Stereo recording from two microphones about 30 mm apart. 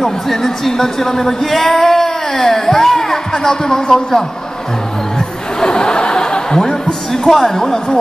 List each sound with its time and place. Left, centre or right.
0.0 s speech: centre
5.6 s laughter: left
7.2 s speech: centre